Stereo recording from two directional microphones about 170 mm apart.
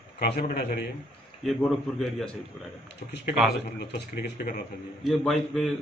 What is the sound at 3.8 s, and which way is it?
Speech, 75° left (ahead or behind).